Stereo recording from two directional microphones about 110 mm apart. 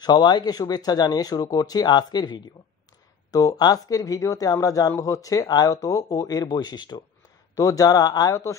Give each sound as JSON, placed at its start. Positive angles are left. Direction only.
{"t": 0.0, "sound": "speech", "side_deg": 40}